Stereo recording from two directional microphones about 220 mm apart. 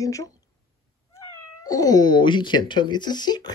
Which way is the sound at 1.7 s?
15° left (ahead or behind).